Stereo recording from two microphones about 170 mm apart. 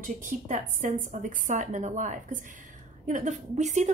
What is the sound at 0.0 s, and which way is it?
A woman's voice, 50° right (ahead or behind).